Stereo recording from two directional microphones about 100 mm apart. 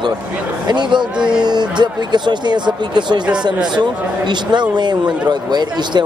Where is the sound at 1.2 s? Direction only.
10° right (ahead or behind).